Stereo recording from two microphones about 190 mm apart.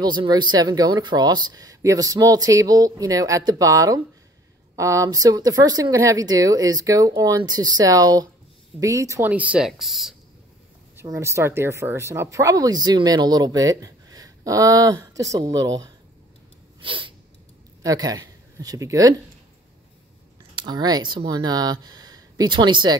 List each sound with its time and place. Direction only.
0.0 s speech: 25° right (ahead or behind); by 10.1 s centre (ahead or behind)
11.0 s speech: 15° right (ahead or behind)
16.8 s sneeze: 25° right (ahead or behind)
17.8 s speech: 20° right (ahead or behind)
20.5 s speech: 20° right (ahead or behind)